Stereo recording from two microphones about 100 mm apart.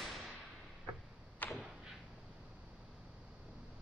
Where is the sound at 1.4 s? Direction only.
15° left (ahead or behind).